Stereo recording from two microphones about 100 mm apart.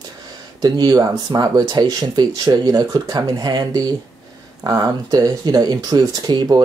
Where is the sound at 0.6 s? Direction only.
40° right (ahead or behind).